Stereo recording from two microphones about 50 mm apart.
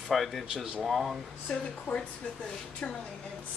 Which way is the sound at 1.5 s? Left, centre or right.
Centre.